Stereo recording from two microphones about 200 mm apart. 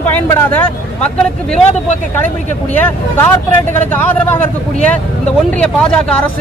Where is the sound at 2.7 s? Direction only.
10° left (ahead or behind).